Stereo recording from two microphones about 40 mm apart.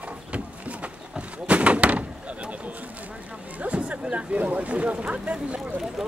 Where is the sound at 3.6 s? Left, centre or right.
Right.